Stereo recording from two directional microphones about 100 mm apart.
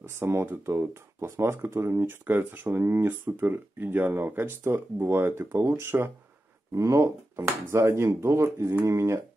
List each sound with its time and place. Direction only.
0.1 s speech: 25° right (ahead or behind)